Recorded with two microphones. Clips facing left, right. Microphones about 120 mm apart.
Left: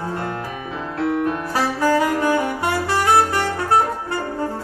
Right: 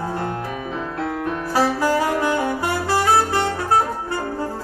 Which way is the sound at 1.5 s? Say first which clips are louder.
Right 2 dB; 30° right (ahead or behind).